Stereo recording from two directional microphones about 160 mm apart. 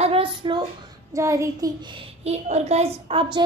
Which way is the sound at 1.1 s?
20° right (ahead or behind).